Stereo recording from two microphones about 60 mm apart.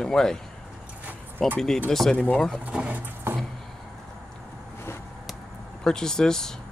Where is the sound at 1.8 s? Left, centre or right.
Centre.